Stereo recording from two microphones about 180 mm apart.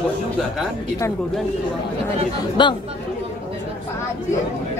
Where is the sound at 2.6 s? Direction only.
25° left (ahead or behind).